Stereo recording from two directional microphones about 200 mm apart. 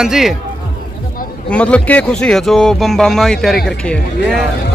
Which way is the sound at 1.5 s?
5° left (ahead or behind).